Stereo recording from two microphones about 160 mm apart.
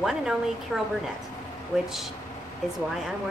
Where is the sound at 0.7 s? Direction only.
Centre (ahead or behind).